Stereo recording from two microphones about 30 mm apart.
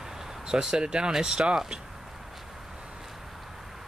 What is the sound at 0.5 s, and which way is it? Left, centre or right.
Speech, right.